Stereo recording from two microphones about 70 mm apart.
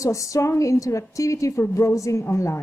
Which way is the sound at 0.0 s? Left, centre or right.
Left.